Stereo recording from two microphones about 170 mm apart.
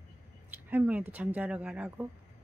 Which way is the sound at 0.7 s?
10° right (ahead or behind).